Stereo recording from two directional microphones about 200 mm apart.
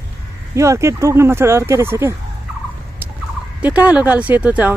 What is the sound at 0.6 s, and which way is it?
Speech, 15° right (ahead or behind).